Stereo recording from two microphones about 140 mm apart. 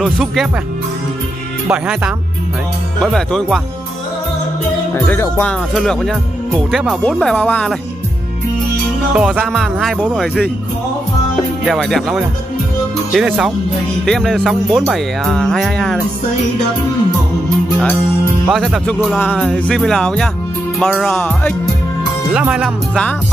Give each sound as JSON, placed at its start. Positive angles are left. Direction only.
{"t": 0.0, "sound": "music", "side_deg": 0}
{"t": 1.7, "sound": "music", "side_deg": -5}
{"t": 4.9, "sound": "music", "side_deg": 15}
{"t": 9.1, "sound": "music", "side_deg": -10}
{"t": 11.6, "sound": "music", "side_deg": 0}
{"t": 18.5, "sound": "music", "side_deg": 0}
{"t": 19.1, "sound": "music", "side_deg": 10}
{"t": 22.3, "sound": "speech", "side_deg": -5}